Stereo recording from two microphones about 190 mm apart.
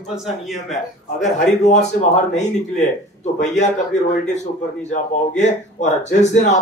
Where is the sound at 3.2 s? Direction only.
40° left (ahead or behind).